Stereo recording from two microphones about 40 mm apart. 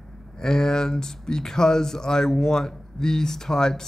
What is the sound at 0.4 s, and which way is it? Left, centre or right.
Speech, centre.